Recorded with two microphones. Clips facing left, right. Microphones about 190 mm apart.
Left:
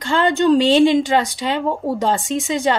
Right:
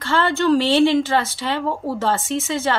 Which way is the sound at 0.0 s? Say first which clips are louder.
Left 3 dB; 15° left (ahead or behind).